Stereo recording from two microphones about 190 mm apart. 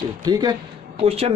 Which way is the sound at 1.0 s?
35° right (ahead or behind).